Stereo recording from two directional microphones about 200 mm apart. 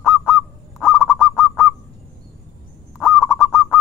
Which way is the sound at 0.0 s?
Centre (ahead or behind).